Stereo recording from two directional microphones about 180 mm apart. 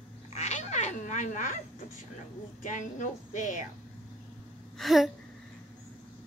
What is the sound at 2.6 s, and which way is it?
A woman's voice, 45° left (ahead or behind).